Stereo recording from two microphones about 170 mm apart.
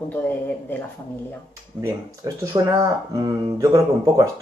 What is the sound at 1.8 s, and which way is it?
Speech, 20° right (ahead or behind).